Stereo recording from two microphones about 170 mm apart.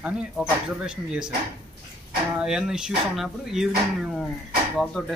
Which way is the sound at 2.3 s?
5° right (ahead or behind).